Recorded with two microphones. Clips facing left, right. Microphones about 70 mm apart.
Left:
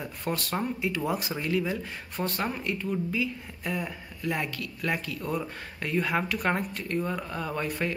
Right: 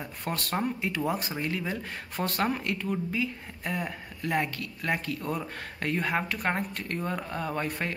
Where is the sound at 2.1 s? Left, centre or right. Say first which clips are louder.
Right 2 dB; right.